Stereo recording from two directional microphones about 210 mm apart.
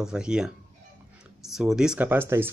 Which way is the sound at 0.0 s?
5° right (ahead or behind).